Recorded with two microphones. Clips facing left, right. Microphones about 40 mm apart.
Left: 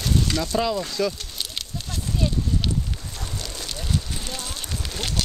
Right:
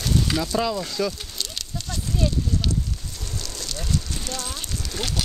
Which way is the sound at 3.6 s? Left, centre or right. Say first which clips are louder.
Right 1 dB; centre.